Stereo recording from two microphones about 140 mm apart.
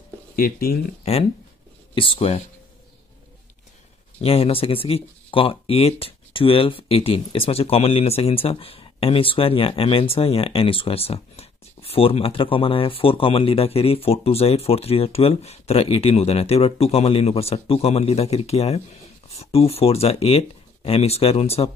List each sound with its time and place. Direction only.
0.4 s speech: 90° left
2.0 s speech: 40° left (ahead or behind)
4.2 s speech: 45° left (ahead or behind)